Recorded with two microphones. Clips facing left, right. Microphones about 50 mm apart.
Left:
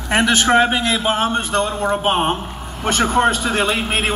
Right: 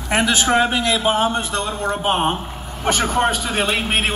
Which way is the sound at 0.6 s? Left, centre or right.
Centre.